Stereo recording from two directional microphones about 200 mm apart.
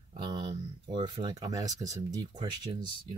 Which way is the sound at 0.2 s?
20° right (ahead or behind).